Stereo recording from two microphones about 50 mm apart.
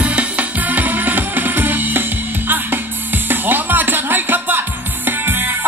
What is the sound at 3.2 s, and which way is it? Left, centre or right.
Music, right.